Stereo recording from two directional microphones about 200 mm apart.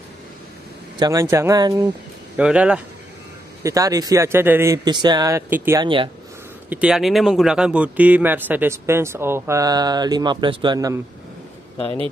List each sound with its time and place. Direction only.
0.9 s speech: 15° right (ahead or behind)
2.3 s speech: 5° right (ahead or behind)
3.6 s speech: 15° right (ahead or behind)